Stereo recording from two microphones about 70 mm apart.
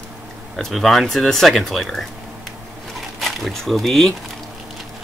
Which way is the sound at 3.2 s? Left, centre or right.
Centre.